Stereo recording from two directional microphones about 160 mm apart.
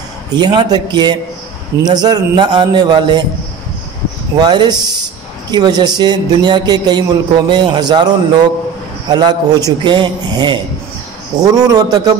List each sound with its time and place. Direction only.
0.4 s a man's voice: 25° right (ahead or behind)
4.4 s a man's voice: 25° right (ahead or behind)